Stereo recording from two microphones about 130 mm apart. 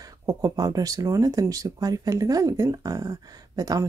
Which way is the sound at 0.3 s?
30° right (ahead or behind).